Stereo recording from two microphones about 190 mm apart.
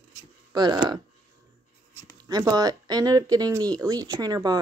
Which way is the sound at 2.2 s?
20° right (ahead or behind).